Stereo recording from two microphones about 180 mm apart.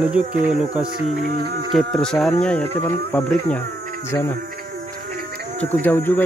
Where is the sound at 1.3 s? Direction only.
60° right (ahead or behind).